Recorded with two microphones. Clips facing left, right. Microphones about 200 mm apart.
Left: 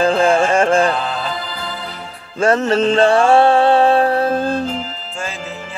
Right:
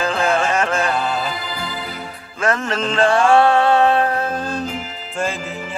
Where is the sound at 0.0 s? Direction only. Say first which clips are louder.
Left 5 dB; 30° left (ahead or behind).